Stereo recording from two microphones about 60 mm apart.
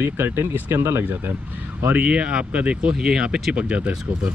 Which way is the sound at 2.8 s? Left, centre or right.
Centre.